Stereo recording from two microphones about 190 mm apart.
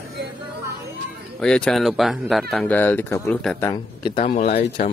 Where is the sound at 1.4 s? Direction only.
5° left (ahead or behind).